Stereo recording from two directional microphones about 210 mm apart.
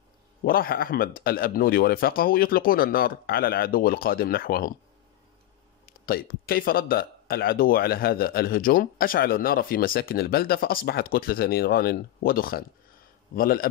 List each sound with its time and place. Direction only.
0.4 s speech: 45° left (ahead or behind)
5.9 s speech: 45° left (ahead or behind)